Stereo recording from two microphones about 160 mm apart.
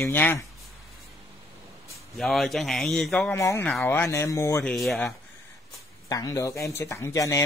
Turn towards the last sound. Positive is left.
turn(degrees=20)  # may be behind; listen again after turning